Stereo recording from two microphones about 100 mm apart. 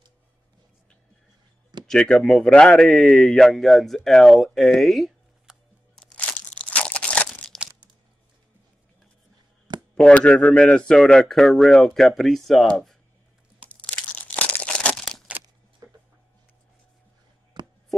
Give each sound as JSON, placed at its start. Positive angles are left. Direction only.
{"t": 1.9, "sound": "a man's voice", "side_deg": 5}
{"t": 6.2, "sound": "crunch", "side_deg": 15}
{"t": 9.9, "sound": "speech", "side_deg": 10}
{"t": 13.7, "sound": "crunch", "side_deg": 15}
{"t": 15.8, "sound": "a sound", "side_deg": -40}
{"t": 17.6, "sound": "a sound", "side_deg": -50}